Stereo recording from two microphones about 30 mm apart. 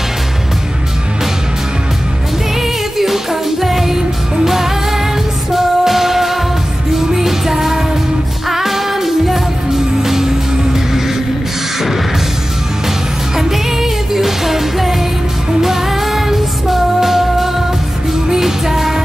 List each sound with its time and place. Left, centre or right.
3.0 s music: centre
13.4 s music: centre